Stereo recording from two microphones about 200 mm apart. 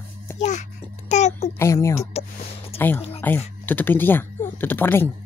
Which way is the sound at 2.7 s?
30° left (ahead or behind).